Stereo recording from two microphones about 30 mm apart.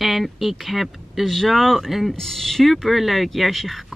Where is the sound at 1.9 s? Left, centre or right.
Centre.